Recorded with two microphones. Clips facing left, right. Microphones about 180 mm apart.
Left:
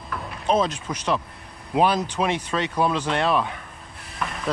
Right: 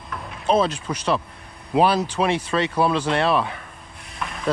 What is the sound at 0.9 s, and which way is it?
Speech, 10° left (ahead or behind).